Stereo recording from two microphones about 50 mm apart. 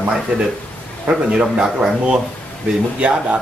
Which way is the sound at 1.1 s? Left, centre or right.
Right.